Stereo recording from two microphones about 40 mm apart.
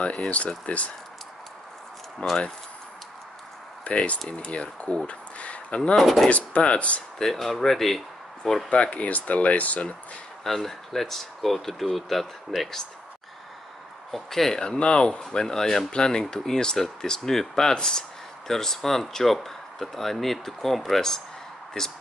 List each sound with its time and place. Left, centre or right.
0.0 s speech: left
2.2 s speech: left
3.8 s speech: left
5.9 s speech: centre
6.2 s speech: left
7.2 s speech: centre
8.6 s speech: left
10.4 s speech: centre
14.1 s speech: centre
14.6 s speech: left
15.4 s speech: centre